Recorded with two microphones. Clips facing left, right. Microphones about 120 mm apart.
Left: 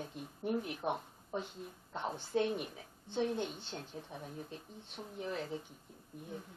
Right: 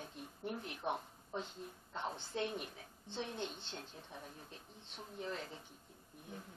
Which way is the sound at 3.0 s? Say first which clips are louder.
Left 8 dB; 15° left (ahead or behind).